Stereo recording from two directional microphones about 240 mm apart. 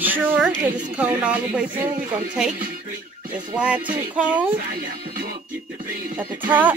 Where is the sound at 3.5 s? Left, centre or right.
Centre.